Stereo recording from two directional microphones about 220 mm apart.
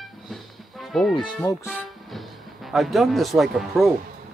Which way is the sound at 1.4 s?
15° left (ahead or behind).